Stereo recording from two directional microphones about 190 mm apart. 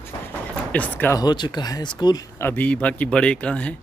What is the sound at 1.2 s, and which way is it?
Speech, 25° left (ahead or behind).